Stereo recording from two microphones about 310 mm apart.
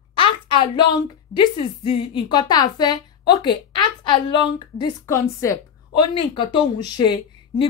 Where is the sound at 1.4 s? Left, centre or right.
Centre.